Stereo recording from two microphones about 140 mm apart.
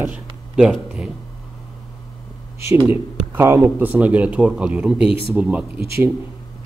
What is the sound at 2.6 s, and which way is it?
Speech, 20° right (ahead or behind).